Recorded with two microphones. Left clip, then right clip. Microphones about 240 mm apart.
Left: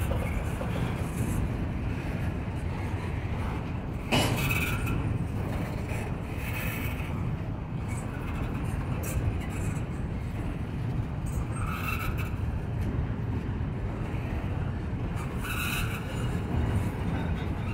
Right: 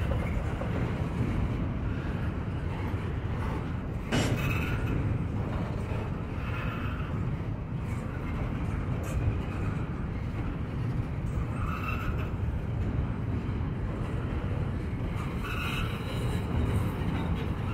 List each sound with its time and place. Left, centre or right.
4.1 s vehicle: left